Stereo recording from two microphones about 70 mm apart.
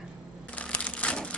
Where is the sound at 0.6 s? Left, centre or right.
Centre.